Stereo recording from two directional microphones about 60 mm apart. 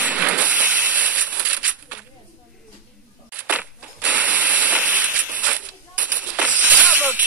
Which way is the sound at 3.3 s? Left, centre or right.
Right.